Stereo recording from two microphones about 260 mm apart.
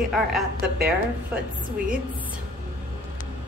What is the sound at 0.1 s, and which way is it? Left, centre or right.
A woman's voice, centre.